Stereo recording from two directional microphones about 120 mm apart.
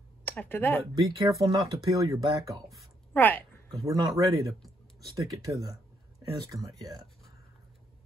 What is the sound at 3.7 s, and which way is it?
Speech, 30° right (ahead or behind).